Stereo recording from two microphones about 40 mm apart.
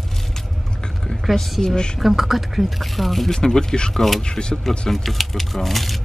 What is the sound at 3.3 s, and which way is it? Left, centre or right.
Speech, centre.